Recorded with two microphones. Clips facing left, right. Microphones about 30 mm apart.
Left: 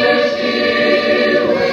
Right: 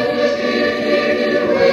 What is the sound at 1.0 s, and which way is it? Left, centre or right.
Choir, left.